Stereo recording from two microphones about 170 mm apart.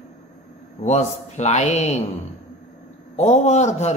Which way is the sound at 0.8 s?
40° left (ahead or behind).